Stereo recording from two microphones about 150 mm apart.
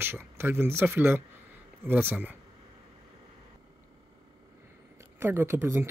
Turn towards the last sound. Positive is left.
turn(degrees=-15)  # may be behind; listen again after turning